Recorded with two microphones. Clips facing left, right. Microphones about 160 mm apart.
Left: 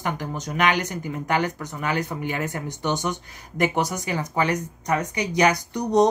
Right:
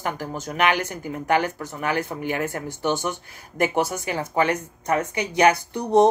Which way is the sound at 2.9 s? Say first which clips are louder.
Right 1 dB; 15° left (ahead or behind).